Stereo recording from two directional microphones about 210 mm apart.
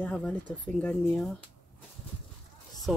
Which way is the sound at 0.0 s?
5° left (ahead or behind).